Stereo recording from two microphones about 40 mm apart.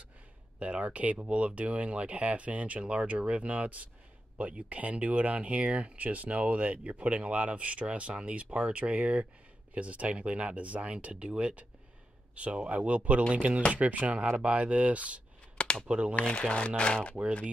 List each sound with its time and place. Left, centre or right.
0.6 s speech: right
15.5 s a sound: left
15.9 s speech: right
16.3 s speech: left